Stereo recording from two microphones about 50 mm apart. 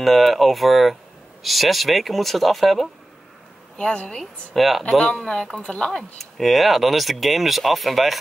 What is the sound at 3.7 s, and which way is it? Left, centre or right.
Speech, left.